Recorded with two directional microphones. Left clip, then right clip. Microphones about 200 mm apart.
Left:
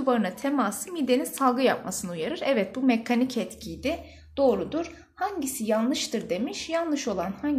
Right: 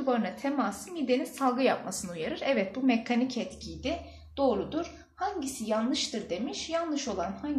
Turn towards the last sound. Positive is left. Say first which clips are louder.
# left 4 dB
turn(degrees=55)  # may be behind; listen again after turning